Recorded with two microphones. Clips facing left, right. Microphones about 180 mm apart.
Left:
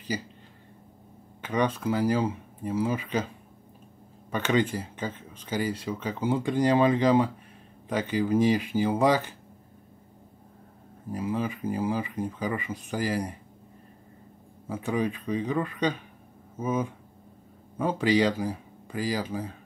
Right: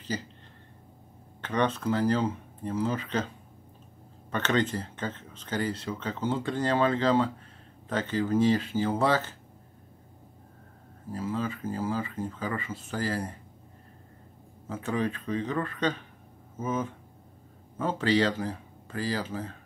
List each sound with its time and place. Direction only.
0.1 s speech: 10° left (ahead or behind)
1.4 s speech: 10° left (ahead or behind)
4.3 s speech: 10° left (ahead or behind)
11.1 s speech: 15° left (ahead or behind)
14.7 s speech: 10° left (ahead or behind)